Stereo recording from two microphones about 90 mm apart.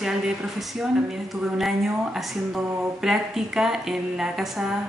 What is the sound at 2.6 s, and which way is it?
Speech, 20° right (ahead or behind).